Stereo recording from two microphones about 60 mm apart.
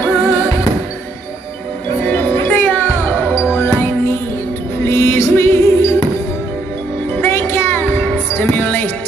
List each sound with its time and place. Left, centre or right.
0.0 s music: left
2.0 s music: left
7.1 s music: left